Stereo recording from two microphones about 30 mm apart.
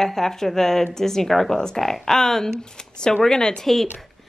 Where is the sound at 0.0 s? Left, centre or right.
Centre.